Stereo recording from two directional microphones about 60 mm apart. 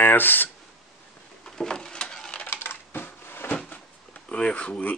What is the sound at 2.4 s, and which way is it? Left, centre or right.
Coin, left.